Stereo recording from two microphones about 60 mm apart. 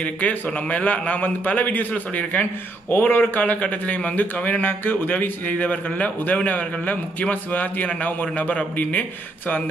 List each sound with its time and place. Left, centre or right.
0.0 s speech: left